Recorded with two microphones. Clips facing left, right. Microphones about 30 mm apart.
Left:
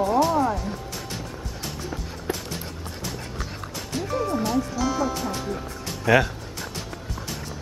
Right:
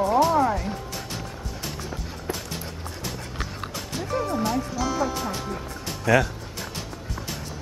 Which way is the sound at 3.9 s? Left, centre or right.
Centre.